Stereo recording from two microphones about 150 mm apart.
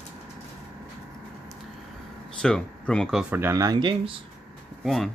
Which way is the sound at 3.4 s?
20° right (ahead or behind).